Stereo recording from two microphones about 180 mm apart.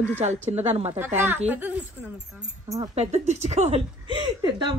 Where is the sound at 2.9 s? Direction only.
35° right (ahead or behind).